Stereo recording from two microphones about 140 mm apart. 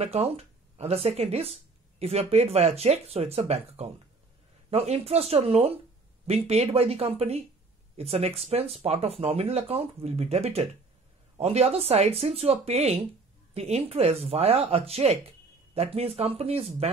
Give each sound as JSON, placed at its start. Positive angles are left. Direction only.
{"t": 0.4, "sound": "speech", "side_deg": -45}